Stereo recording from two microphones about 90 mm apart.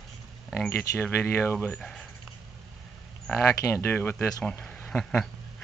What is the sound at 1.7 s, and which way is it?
Speech, 5° left (ahead or behind).